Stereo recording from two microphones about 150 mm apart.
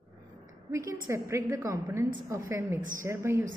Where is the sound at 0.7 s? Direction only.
20° right (ahead or behind).